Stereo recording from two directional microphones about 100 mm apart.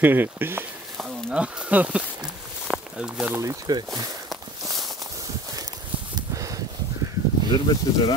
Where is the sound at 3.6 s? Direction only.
40° right (ahead or behind).